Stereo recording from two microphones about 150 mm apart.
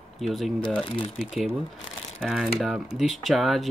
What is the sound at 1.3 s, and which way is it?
Speech, centre (ahead or behind).